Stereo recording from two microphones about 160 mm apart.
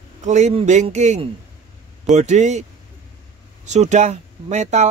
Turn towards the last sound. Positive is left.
turn(degrees=-45)  # may be behind; listen again after turning